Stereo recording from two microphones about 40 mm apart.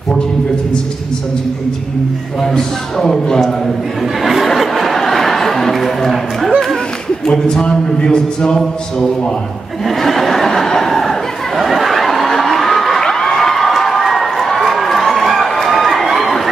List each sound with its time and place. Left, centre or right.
2.4 s a man's voice: centre
4.2 s a sound: centre
7.6 s speech: left
8.5 s a man's voice: centre
9.8 s a sound: centre
13.0 s crowd: centre